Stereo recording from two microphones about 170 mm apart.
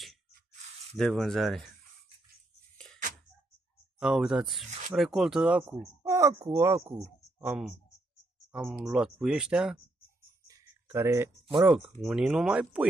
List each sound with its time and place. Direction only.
0.9 s speech: 5° left (ahead or behind)
4.0 s speech: 5° right (ahead or behind)
4.6 s speech: 45° right (ahead or behind)
4.9 s speech: centre (ahead or behind)
6.0 s a sound: 15° right (ahead or behind)
6.4 s speech: 15° right (ahead or behind)
10.4 s a sound: 15° right (ahead or behind)
12.0 s speech: centre (ahead or behind)